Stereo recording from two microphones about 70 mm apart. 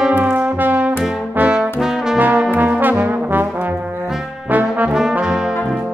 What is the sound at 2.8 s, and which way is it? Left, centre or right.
Trombone, right.